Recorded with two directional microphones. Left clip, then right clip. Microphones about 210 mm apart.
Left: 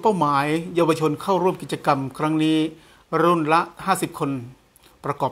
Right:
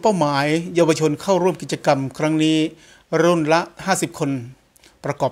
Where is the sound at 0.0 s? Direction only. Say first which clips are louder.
Right 1 dB; 45° right (ahead or behind).